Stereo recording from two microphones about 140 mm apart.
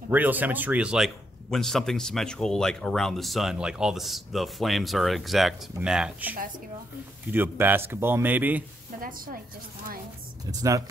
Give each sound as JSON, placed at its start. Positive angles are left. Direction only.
{"t": 0.1, "sound": "speech", "side_deg": -10}
{"t": 9.0, "sound": "a woman's voice", "side_deg": -90}